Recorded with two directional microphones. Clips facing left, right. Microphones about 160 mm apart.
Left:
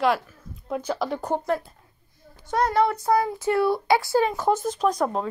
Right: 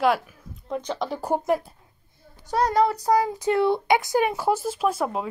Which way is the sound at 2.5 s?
35° right (ahead or behind).